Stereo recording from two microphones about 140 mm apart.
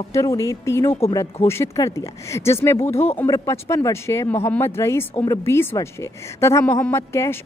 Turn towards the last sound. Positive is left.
turn(degrees=20)  # may be behind; listen again after turning